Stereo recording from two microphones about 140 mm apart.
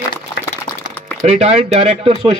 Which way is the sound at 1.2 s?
50° right (ahead or behind).